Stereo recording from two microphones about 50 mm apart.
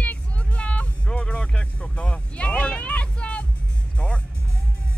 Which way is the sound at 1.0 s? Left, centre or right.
Centre.